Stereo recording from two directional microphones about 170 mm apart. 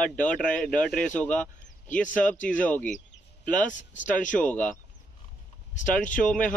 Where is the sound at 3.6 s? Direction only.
50° left (ahead or behind).